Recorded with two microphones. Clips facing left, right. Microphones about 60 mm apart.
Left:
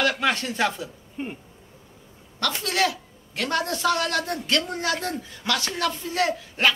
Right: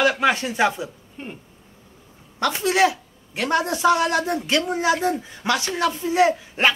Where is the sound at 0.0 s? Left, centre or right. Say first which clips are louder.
Right 4 dB; centre.